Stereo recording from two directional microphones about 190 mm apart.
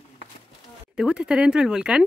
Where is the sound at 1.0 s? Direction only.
5° right (ahead or behind).